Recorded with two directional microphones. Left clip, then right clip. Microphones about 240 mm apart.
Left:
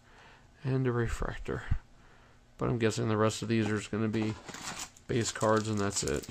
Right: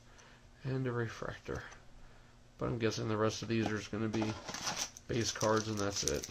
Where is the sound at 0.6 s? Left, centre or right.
Left.